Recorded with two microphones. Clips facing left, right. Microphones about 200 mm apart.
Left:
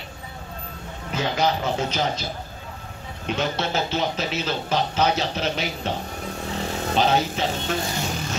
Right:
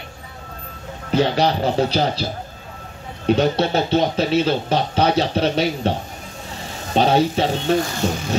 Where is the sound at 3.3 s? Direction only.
35° right (ahead or behind).